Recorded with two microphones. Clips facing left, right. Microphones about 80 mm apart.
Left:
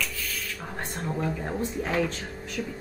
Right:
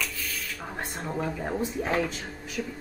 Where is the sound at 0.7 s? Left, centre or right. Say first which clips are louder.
Left 1 dB; centre.